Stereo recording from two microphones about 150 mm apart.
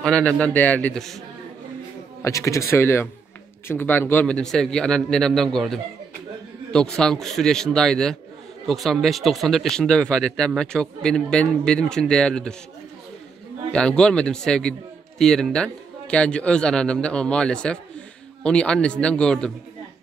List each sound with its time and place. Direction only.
0.0 s a man's voice: 5° left (ahead or behind)
2.2 s speech: 20° left (ahead or behind); by 5.8 s 5° left (ahead or behind)
7.0 s speech: 5° left (ahead or behind)
13.7 s a man's voice: 5° left (ahead or behind)